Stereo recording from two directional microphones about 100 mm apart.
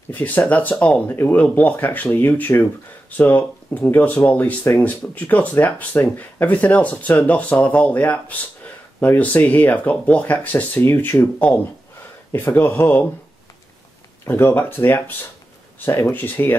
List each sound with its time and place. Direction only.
0.1 s speech: 15° left (ahead or behind)
14.2 s speech: 25° left (ahead or behind)